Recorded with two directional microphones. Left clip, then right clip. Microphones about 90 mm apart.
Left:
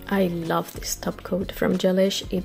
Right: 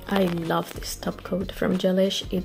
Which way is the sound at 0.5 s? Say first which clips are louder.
Left 1 dB; 5° left (ahead or behind).